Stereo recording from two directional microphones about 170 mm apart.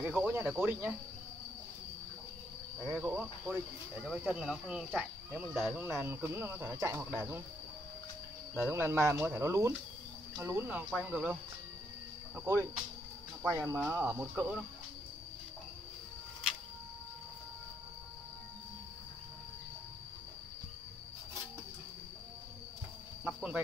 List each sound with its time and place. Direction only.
0.0 s speech: 5° right (ahead or behind)
3.0 s speech: 5° right (ahead or behind)
5.8 s speech: 15° right (ahead or behind)
8.6 s speech: 15° right (ahead or behind)
12.4 s speech: 15° right (ahead or behind)
23.2 s speech: 5° right (ahead or behind)